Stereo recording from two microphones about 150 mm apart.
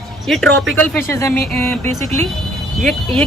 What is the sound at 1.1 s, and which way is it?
Speech, 15° left (ahead or behind).